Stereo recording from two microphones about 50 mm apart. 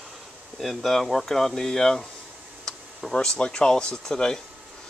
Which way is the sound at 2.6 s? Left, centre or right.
Centre.